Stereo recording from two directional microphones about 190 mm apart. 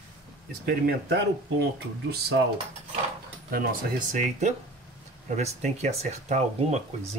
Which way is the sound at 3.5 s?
45° right (ahead or behind).